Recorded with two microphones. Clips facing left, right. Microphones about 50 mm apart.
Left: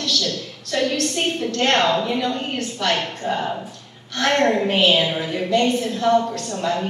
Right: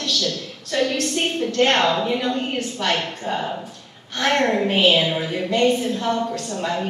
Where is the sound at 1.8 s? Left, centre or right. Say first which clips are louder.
Left 1 dB; centre.